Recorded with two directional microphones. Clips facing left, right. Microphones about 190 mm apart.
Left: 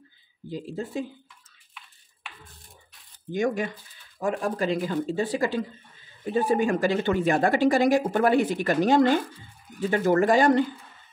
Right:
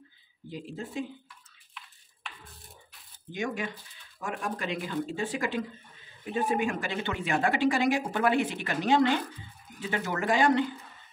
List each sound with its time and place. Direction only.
0.5 s speech: 35° left (ahead or behind)
3.3 s speech: 45° left (ahead or behind)